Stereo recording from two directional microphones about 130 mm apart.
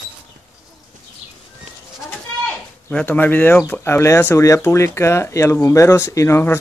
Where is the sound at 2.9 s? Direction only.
10° left (ahead or behind).